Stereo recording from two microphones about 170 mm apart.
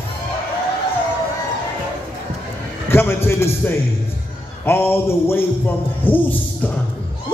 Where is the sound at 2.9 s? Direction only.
15° left (ahead or behind).